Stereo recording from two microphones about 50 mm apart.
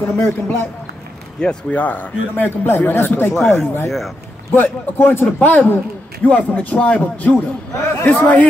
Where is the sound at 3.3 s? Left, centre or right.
Centre.